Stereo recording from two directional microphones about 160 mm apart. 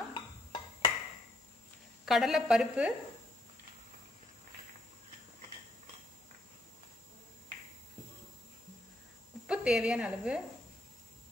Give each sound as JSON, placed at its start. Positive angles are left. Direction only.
{"t": 0.1, "sound": "a sound", "side_deg": 30}
{"t": 2.0, "sound": "a woman's voice", "side_deg": 0}
{"t": 9.5, "sound": "a woman's voice", "side_deg": -5}